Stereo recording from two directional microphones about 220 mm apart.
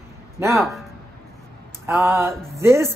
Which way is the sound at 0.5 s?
Centre (ahead or behind).